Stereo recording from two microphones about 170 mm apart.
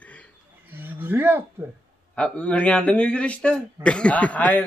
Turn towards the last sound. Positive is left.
turn(degrees=10)  # may be behind; listen again after turning